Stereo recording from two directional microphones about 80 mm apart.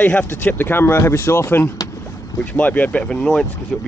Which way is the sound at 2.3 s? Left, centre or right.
Left.